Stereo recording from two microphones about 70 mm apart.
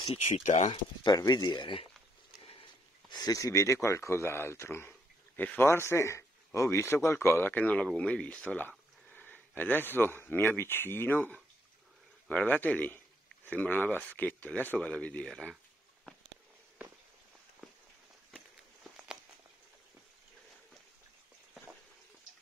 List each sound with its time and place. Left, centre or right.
1.0 s speech: left
2.6 s speech: left
8.0 s a sound: centre
9.6 s speech: left
15.2 s speech: centre
17.6 s a sound: centre